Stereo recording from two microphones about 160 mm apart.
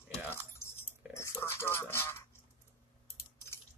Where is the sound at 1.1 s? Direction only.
15° left (ahead or behind).